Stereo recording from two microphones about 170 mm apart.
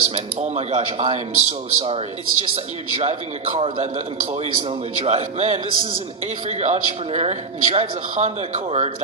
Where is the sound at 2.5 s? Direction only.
35° right (ahead or behind).